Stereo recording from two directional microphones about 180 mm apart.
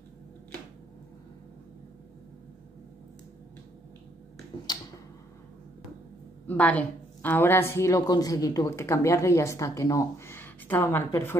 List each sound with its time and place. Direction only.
6.4 s speech: 10° left (ahead or behind)